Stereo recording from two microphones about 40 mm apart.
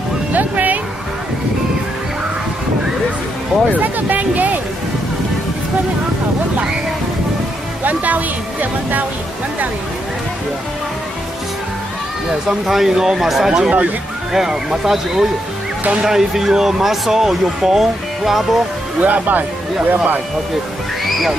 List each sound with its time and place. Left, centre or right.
0.3 s music: right
3.7 s music: right
7.8 s music: right
12.3 s speech: centre
13.5 s speech: right
18.9 s speech: right
21.0 s music: centre